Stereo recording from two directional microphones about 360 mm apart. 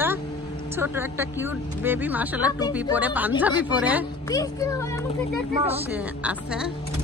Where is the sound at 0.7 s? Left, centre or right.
Centre.